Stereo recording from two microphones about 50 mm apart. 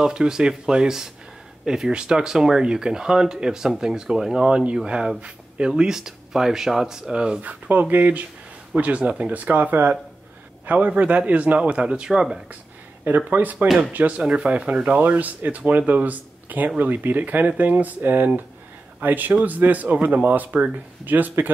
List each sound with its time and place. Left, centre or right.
0.0 s speech: centre
7.4 s a man's voice: right; by 12.4 s centre
13.0 s a man's voice: right